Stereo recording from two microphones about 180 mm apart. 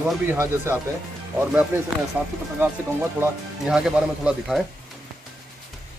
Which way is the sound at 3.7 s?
5° right (ahead or behind).